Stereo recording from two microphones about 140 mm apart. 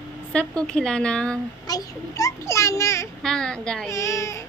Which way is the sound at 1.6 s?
25° left (ahead or behind).